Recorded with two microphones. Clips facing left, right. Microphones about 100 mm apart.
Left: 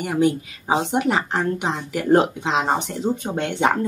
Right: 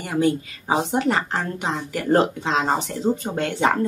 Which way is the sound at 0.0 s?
15° left (ahead or behind).